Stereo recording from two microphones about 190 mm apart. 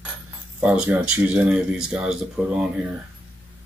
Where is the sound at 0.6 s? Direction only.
5° right (ahead or behind).